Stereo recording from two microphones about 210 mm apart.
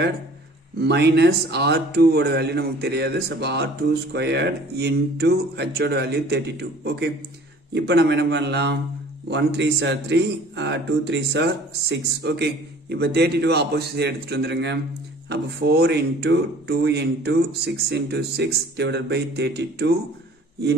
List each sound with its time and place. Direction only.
0.7 s speech: 50° right (ahead or behind)